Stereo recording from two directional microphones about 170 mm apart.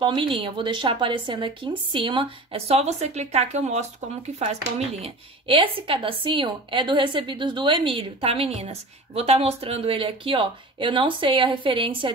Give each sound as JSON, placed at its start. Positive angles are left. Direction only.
{"t": 0.0, "sound": "speech", "side_deg": -30}